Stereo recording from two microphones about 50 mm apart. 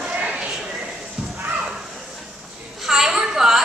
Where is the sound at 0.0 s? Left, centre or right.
Centre.